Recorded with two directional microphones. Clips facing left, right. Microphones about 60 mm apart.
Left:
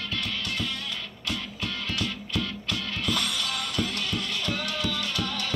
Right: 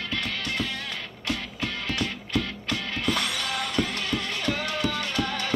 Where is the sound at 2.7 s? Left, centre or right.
Right.